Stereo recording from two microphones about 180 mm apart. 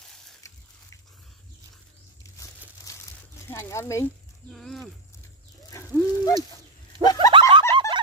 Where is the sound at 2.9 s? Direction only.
20° left (ahead or behind).